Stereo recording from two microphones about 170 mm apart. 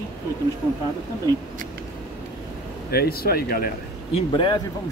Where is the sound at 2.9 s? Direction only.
65° left (ahead or behind).